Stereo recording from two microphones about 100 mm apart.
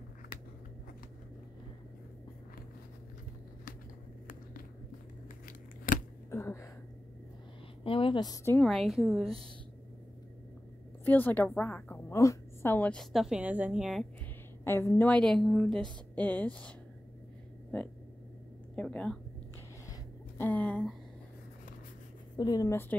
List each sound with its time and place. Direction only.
6.3 s a sound: 30° left (ahead or behind)
7.8 s a sound: 65° left (ahead or behind)
8.5 s a woman's voice: centre (ahead or behind)
11.1 s a woman's voice: 20° left (ahead or behind)
12.9 s a woman's voice: centre (ahead or behind)
13.4 s a woman's voice: 15° right (ahead or behind)
14.6 s a woman's voice: 25° left (ahead or behind)
15.0 s a woman's voice: 5° left (ahead or behind)
18.8 s speech: 10° left (ahead or behind)
20.3 s speech: 15° left (ahead or behind)
22.4 s speech: 40° left (ahead or behind)
22.7 s a woman's voice: 20° left (ahead or behind)